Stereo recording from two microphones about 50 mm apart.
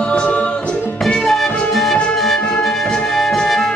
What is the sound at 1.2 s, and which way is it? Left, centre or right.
Music, centre.